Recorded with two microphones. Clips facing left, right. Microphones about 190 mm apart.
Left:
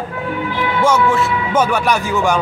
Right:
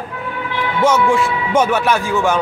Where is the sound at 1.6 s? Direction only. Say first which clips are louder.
Right 1 dB; 15° left (ahead or behind).